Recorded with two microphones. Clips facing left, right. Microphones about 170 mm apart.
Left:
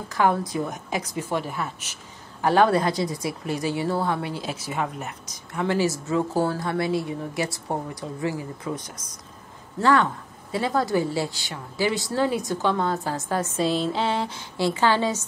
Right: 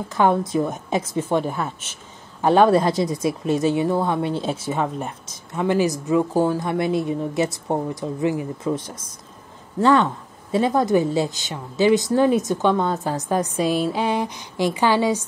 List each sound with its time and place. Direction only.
0.1 s a woman's voice: 25° right (ahead or behind)